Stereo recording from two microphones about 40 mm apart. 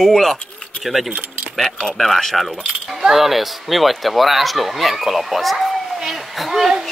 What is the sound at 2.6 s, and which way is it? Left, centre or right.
Speech, centre.